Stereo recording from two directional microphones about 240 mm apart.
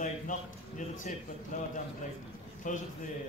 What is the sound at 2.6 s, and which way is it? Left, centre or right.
Speech, left.